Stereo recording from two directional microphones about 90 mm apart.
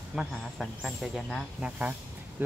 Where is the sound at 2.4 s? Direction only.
20° right (ahead or behind).